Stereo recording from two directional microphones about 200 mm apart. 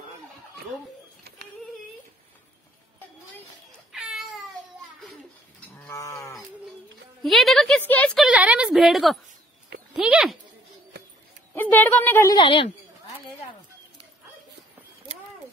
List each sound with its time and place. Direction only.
3.9 s a sound: 5° right (ahead or behind)
5.9 s livestock: 15° left (ahead or behind)
7.2 s a woman's voice: centre (ahead or behind)
8.3 s a woman's voice: 5° right (ahead or behind)
11.5 s a woman's voice: 10° left (ahead or behind)
12.4 s a woman's voice: 25° left (ahead or behind)